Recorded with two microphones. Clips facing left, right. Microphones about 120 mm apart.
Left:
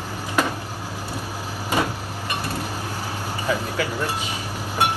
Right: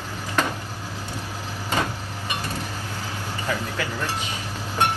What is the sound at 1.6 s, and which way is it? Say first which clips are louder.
Vehicle: left 3 dB; 10° left (ahead or behind).